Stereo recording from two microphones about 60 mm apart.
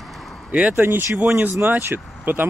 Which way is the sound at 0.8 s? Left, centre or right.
Right.